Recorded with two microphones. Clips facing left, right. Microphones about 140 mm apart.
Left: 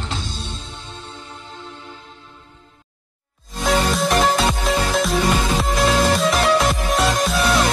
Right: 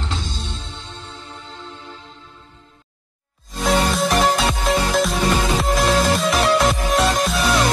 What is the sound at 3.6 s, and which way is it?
Music, centre (ahead or behind).